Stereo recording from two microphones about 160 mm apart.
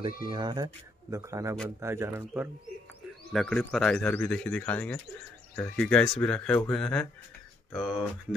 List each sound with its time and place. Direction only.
0.0 s a man's voice: 30° right (ahead or behind); by 2.5 s 15° right (ahead or behind)
3.3 s speech: 5° left (ahead or behind)